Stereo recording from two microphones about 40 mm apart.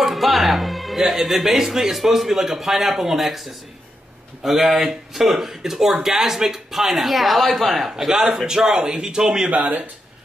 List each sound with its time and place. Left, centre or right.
0.0 s speech: centre
9.5 s speech: right